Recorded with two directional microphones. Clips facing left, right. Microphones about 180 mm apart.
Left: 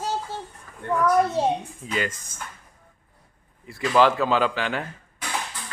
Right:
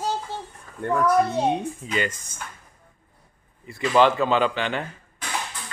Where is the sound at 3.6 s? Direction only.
Centre (ahead or behind).